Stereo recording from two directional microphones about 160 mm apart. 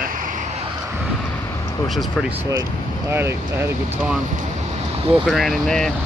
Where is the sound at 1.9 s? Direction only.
Centre (ahead or behind).